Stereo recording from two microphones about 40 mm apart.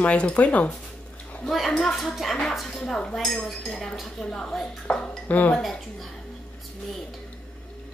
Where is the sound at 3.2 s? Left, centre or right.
Centre.